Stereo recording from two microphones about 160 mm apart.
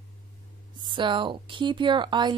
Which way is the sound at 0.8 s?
30° right (ahead or behind).